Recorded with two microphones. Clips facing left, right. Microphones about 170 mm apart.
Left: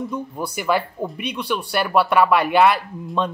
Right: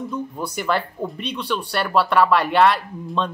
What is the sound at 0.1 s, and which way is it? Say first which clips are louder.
Speech: even; 10° left (ahead or behind).